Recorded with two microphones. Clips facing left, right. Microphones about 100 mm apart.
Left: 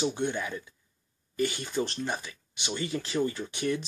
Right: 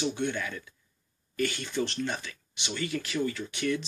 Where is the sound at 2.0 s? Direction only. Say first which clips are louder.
Even; 20° left (ahead or behind).